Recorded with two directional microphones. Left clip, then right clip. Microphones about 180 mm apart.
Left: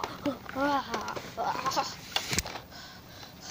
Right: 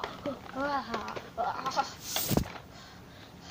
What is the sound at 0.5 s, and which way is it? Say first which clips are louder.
Speech: left 3 dB; 35° left (ahead or behind).